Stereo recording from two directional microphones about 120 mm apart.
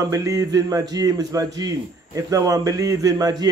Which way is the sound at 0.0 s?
25° right (ahead or behind).